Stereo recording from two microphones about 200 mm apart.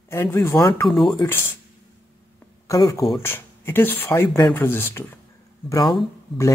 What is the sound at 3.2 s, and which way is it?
Speech, 10° left (ahead or behind).